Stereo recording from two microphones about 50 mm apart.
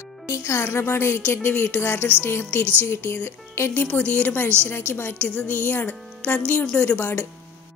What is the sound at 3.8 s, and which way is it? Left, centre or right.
Speech, left.